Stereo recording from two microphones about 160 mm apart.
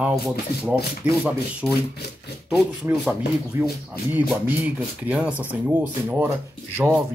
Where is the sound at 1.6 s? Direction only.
Centre (ahead or behind).